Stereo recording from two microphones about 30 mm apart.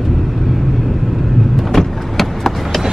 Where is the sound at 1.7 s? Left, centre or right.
Centre.